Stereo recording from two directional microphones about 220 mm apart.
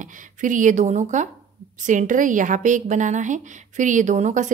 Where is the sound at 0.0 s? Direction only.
35° right (ahead or behind).